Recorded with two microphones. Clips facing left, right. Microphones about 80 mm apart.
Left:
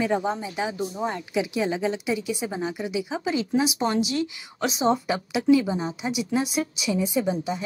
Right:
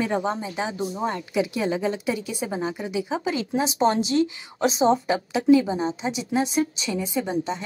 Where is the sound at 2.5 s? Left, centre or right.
Right.